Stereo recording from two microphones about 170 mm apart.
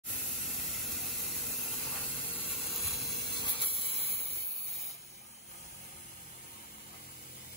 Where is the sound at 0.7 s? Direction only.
Centre (ahead or behind).